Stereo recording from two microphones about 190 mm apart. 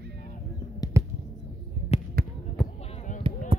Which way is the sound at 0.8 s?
20° left (ahead or behind).